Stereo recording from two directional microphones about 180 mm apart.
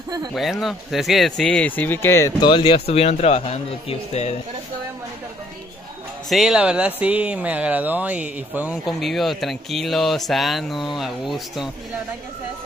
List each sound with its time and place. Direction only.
0.3 s speech: centre (ahead or behind)
2.4 s speech: 30° left (ahead or behind)
6.2 s speech: centre (ahead or behind)